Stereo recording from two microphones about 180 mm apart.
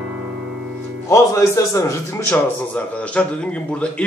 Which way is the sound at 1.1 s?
15° left (ahead or behind).